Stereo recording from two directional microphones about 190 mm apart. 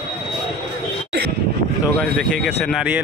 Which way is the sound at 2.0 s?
Centre (ahead or behind).